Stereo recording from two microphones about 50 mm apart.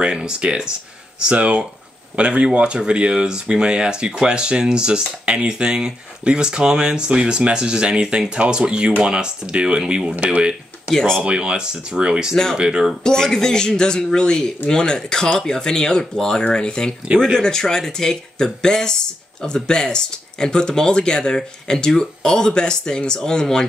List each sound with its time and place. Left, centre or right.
0.0 s speech: centre
10.9 s speech: centre
11.2 s speech: centre
13.0 s speech: centre